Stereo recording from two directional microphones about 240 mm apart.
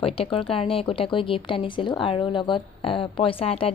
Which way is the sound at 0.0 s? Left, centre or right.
Left.